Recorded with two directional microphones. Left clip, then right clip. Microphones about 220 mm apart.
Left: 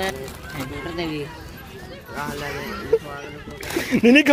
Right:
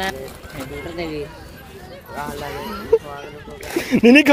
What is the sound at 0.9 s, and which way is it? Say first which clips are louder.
Speech: right 1 dB; 40° left (ahead or behind).